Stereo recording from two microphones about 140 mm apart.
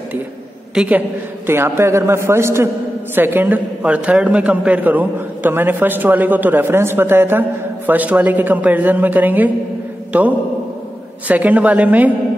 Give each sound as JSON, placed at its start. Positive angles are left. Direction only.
{"t": 0.7, "sound": "a man's voice", "side_deg": -10}